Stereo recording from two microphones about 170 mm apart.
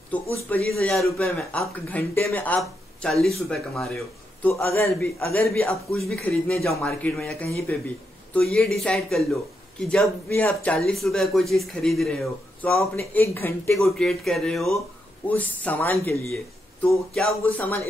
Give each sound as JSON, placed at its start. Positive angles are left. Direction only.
{"t": 0.1, "sound": "speech", "side_deg": 10}
{"t": 5.6, "sound": "a man's voice", "side_deg": 0}
{"t": 12.9, "sound": "speech", "side_deg": 15}
{"t": 13.7, "sound": "a man's voice", "side_deg": 0}